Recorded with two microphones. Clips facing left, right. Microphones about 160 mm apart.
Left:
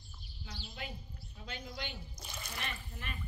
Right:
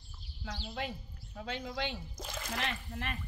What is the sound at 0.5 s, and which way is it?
Speech, 85° right.